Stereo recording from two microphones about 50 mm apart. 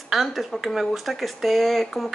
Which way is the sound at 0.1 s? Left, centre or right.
Centre.